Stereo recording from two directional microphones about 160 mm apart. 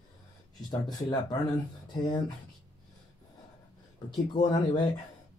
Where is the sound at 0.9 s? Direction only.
25° left (ahead or behind).